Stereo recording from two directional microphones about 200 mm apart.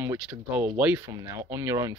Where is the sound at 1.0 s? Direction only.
15° right (ahead or behind).